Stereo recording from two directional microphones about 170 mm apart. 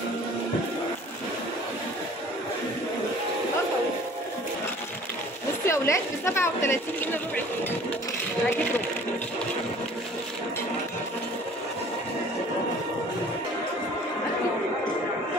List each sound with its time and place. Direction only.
5.7 s a woman's voice: 15° left (ahead or behind)